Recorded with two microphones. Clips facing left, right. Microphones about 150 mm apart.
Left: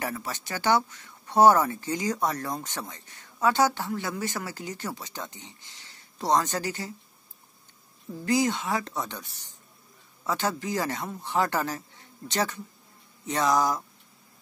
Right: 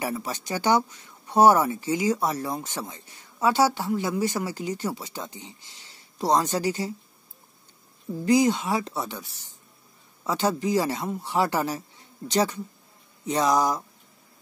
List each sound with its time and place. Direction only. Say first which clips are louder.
0.0 s speech: right 3 dB; 15° right (ahead or behind)
8.1 s speech: right 5 dB; 15° right (ahead or behind)